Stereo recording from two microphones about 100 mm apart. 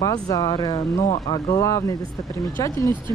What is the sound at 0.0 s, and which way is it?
A woman's voice, 40° left (ahead or behind).